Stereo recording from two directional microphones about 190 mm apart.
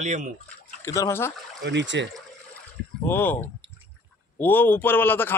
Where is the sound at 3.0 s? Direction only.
10° left (ahead or behind).